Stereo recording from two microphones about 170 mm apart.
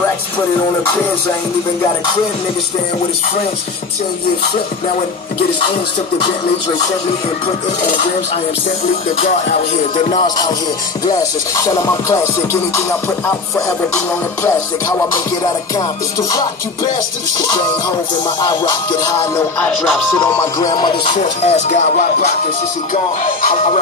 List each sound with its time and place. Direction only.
9.2 s music: 45° left (ahead or behind)
10.1 s music: 25° left (ahead or behind)
16.2 s music: 20° left (ahead or behind)
18.5 s music: 25° left (ahead or behind)
20.2 s music: 20° left (ahead or behind)
21.2 s music: 40° left (ahead or behind)